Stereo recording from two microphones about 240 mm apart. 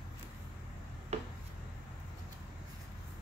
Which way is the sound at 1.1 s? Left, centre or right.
Right.